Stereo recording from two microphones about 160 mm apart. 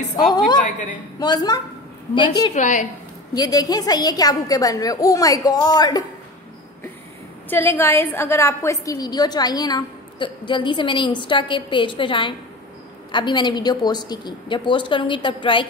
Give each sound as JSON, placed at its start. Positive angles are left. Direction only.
{"t": 0.1, "sound": "a woman's voice", "side_deg": 25}
{"t": 2.5, "sound": "a woman's voice", "side_deg": 50}
{"t": 3.3, "sound": "a woman's voice", "side_deg": 25}
{"t": 7.4, "sound": "a woman's voice", "side_deg": 10}